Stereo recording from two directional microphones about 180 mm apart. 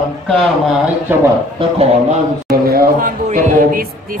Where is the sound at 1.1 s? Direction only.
10° right (ahead or behind).